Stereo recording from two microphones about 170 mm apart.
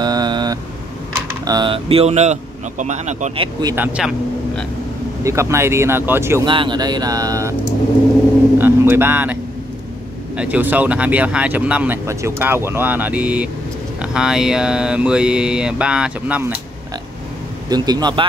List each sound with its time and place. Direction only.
0.0 s vehicle: 25° right (ahead or behind)
1.4 s speech: 25° right (ahead or behind); by 3.3 s 45° right (ahead or behind)
3.7 s speech: 10° right (ahead or behind)
5.2 s speech: 15° right (ahead or behind)
6.4 s speech: 30° right (ahead or behind)
8.5 s speech: 10° right (ahead or behind)
17.6 s speech: 25° right (ahead or behind)